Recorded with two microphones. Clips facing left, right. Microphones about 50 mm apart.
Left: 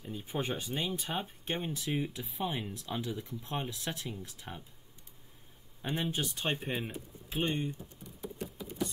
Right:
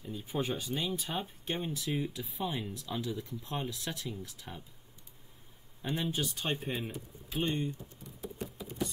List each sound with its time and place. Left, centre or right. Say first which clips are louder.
0.0 s speech: right 1 dB; left
3.6 s speech: even; left
5.8 s speech: even; centre